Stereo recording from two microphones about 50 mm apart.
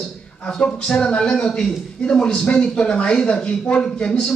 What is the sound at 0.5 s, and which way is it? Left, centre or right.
Speech, centre.